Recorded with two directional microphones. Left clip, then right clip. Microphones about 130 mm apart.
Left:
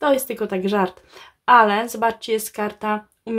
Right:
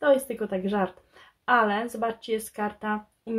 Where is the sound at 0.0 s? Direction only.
40° left (ahead or behind).